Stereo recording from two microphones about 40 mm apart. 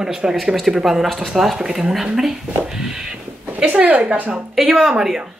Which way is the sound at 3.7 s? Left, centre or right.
Right.